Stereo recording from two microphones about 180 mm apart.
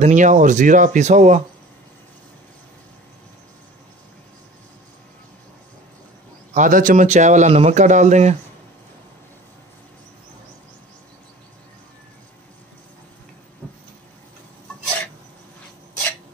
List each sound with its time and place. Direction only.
0.0 s speech: 40° right (ahead or behind)
6.5 s speech: 45° right (ahead or behind)